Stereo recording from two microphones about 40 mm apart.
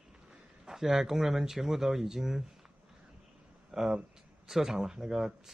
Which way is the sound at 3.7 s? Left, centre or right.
Centre.